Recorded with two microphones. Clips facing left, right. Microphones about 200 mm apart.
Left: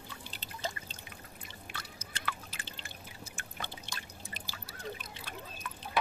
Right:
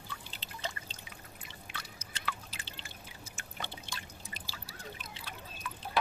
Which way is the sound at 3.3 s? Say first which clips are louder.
Right 1 dB; 50° left (ahead or behind).